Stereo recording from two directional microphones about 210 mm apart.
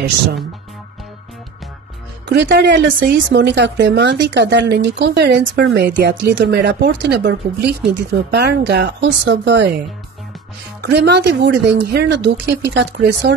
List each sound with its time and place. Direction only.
2.2 s speech: 55° right (ahead or behind)
10.8 s speech: 55° right (ahead or behind)